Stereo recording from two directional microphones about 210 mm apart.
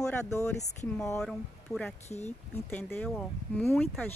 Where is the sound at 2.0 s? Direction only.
30° left (ahead or behind).